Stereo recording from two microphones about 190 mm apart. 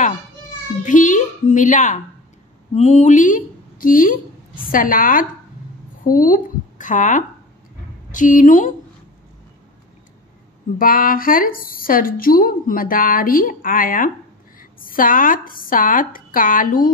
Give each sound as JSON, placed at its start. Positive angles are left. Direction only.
{"t": 0.8, "sound": "a woman's voice", "side_deg": 40}
{"t": 10.8, "sound": "a woman's voice", "side_deg": 50}